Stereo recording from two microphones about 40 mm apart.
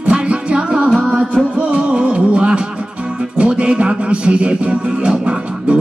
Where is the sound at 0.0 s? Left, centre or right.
Right.